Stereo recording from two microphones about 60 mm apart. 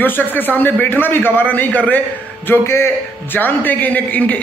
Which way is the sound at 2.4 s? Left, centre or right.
Left.